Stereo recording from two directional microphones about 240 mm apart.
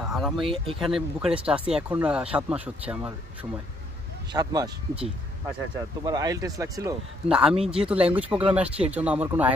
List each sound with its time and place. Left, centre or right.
0.0 s a sound: centre
0.7 s speech: centre
4.3 s speech: centre